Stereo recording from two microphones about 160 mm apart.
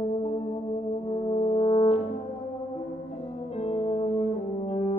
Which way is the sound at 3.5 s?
35° left (ahead or behind).